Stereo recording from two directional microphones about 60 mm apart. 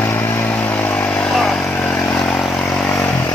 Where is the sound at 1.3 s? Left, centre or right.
Centre.